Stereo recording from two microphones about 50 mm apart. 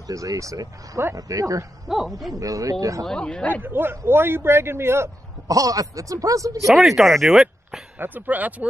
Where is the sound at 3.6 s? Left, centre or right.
Right.